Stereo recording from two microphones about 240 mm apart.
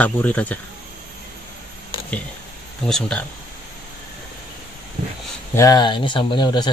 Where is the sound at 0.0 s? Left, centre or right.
Centre.